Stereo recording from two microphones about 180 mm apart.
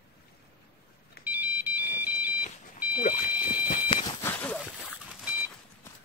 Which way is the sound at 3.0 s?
50° left (ahead or behind).